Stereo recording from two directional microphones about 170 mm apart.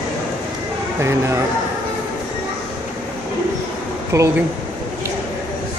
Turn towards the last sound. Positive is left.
turn(degrees=-20)  # may be behind; listen again after turning